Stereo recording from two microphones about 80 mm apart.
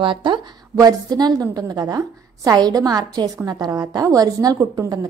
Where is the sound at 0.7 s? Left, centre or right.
Right.